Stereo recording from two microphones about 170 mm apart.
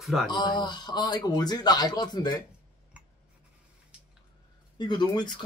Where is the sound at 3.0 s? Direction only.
5° right (ahead or behind).